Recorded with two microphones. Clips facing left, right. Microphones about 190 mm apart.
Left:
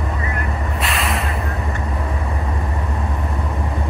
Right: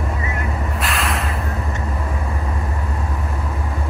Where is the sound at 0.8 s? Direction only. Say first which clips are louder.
Left 1 dB; centre (ahead or behind).